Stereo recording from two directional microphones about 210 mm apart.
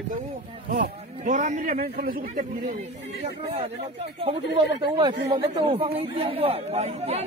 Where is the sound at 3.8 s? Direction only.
30° right (ahead or behind).